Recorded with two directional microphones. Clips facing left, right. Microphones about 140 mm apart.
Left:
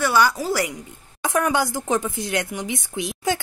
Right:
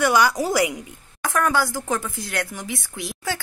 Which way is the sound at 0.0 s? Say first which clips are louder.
Right 1 dB; 15° right (ahead or behind).